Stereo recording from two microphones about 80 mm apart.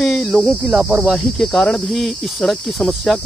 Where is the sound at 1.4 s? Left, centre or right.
Centre.